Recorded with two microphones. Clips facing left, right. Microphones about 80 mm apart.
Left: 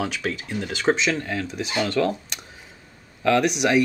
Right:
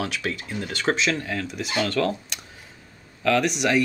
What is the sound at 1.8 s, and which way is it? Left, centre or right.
Speech, centre.